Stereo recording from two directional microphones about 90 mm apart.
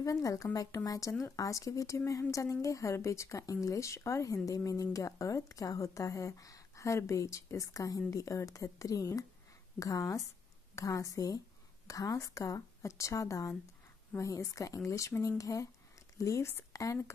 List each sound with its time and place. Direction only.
0.0 s a woman's voice: 40° left (ahead or behind)